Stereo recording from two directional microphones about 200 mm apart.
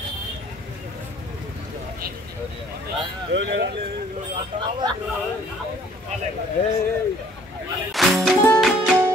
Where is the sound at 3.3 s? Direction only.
55° right (ahead or behind).